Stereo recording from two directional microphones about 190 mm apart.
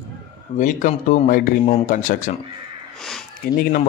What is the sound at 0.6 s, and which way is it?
A man's voice, 45° left (ahead or behind).